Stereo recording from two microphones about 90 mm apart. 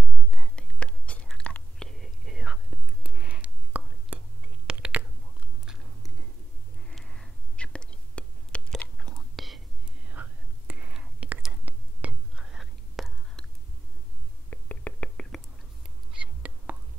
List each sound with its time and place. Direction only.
0.3 s whispering: 10° left (ahead or behind); by 5.0 s 15° right (ahead or behind)
5.7 s a sound: 5° right (ahead or behind)
6.9 s whispering: 5° left (ahead or behind)
10.0 s whispering: 20° right (ahead or behind); by 13.5 s centre (ahead or behind)
14.5 s whispering: 15° left (ahead or behind)
16.1 s a sound: 15° right (ahead or behind)